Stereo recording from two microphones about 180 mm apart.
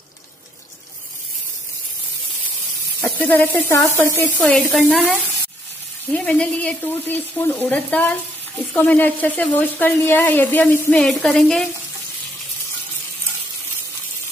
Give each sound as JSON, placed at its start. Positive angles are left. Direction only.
{"t": 3.0, "sound": "speech", "side_deg": 10}
{"t": 4.4, "sound": "speech", "side_deg": 0}
{"t": 6.1, "sound": "speech", "side_deg": 5}